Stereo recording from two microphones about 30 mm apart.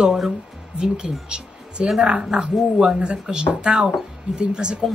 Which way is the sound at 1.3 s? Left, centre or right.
Right.